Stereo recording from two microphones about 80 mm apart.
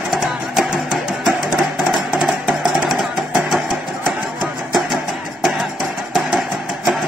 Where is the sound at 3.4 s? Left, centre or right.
Centre.